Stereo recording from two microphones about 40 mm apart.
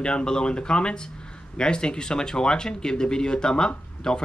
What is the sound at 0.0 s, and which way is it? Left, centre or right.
Speech, left.